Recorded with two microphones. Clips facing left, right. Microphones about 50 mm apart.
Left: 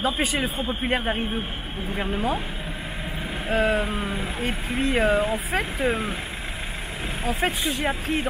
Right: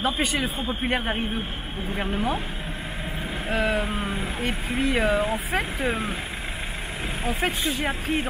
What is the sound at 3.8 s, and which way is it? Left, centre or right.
Speech, centre.